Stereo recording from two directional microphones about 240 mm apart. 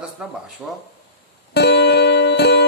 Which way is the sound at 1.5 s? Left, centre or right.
Left.